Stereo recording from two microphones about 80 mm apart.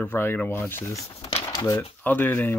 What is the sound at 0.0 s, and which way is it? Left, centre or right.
Speech, left.